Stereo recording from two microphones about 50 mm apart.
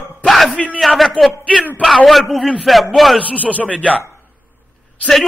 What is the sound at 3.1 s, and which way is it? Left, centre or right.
Speech, left.